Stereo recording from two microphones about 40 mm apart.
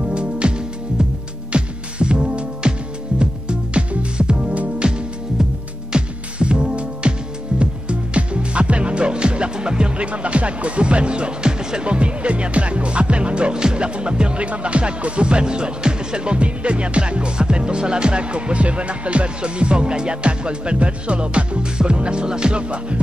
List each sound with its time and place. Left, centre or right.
0.0 s music: right
4.7 s music: right